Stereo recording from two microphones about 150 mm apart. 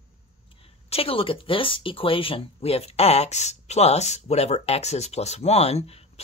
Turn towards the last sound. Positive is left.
turn(degrees=45)  # may be behind; listen again after turning